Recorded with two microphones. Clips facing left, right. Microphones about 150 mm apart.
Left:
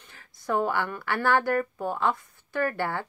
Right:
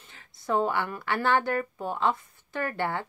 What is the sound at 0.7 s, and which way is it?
Speech, centre (ahead or behind).